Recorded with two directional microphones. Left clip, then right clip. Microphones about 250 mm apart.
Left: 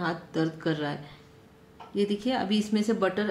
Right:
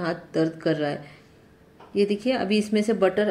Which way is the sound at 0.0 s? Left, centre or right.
Centre.